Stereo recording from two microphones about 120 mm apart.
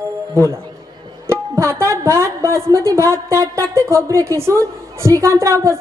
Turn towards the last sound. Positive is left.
turn(degrees=-25)  # may be behind; listen again after turning